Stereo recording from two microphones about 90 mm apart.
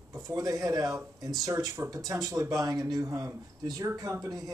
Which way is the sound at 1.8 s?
25° right (ahead or behind).